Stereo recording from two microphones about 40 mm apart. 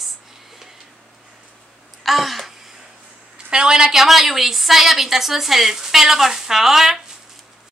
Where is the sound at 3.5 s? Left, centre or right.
Centre.